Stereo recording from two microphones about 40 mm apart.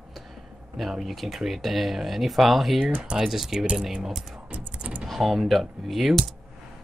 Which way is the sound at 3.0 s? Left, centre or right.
Right.